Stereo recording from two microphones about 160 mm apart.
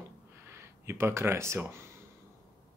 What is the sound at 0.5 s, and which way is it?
Speech, 15° right (ahead or behind).